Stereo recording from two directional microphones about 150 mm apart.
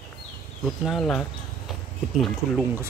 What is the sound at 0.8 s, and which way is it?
Speech, 5° left (ahead or behind).